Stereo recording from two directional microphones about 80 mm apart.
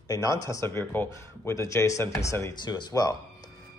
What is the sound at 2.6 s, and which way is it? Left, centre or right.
Speech, left.